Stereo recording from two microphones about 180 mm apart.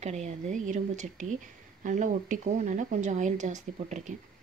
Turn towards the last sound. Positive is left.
turn(degrees=-40)  # may be behind; listen again after turning